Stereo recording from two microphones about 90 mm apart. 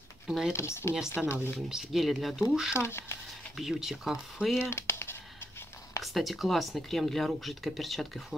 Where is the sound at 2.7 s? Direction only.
30° left (ahead or behind).